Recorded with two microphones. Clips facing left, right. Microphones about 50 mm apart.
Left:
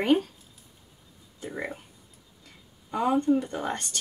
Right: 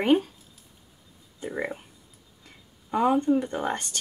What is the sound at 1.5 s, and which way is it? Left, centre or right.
Speech, centre.